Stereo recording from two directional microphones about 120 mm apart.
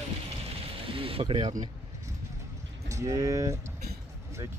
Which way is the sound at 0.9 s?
50° right (ahead or behind).